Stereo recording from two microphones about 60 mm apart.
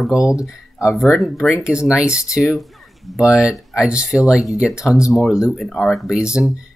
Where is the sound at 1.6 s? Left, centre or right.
Centre.